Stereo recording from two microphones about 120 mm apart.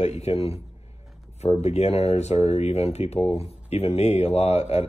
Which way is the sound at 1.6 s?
60° left (ahead or behind).